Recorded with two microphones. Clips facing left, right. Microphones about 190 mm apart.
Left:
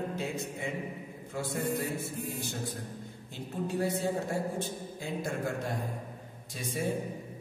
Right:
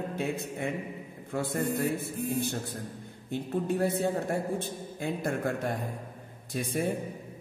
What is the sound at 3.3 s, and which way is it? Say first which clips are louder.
Speech: right 5 dB; 55° right (ahead or behind).